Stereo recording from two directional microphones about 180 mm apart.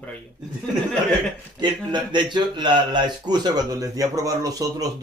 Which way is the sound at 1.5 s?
25° right (ahead or behind).